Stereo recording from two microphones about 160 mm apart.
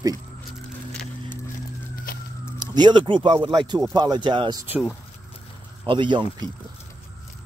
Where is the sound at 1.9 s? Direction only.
65° left (ahead or behind).